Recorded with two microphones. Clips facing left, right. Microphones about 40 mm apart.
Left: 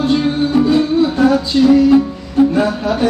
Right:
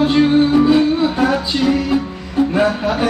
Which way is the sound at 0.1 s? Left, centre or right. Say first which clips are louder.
Right 2 dB; centre.